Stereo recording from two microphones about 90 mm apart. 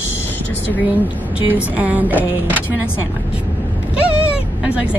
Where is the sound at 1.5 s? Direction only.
15° right (ahead or behind).